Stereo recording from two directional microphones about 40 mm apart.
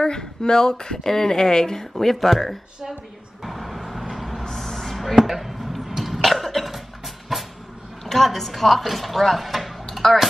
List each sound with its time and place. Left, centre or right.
0.0 s a woman's voice: centre
3.4 s vehicle: centre
4.5 s a sound: centre
7.3 s train: centre
8.0 s speech: centre